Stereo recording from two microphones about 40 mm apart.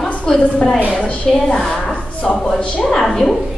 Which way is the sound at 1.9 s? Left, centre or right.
Left.